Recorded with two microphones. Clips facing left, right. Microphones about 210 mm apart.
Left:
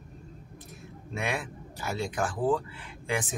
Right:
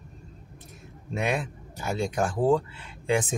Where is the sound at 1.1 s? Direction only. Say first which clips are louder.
Right 5 dB; 20° right (ahead or behind).